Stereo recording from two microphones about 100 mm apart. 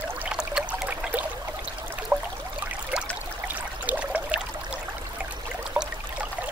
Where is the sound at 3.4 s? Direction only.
15° right (ahead or behind).